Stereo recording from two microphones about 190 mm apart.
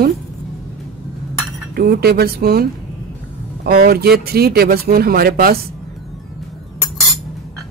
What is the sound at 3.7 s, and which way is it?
A man's voice, 55° right (ahead or behind).